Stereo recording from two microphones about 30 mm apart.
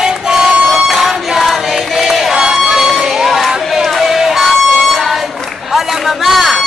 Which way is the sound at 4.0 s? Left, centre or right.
Centre.